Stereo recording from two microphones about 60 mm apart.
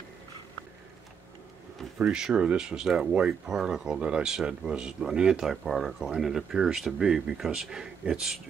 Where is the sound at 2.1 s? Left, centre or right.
Centre.